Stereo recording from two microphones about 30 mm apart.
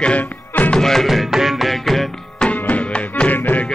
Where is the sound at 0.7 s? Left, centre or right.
Centre.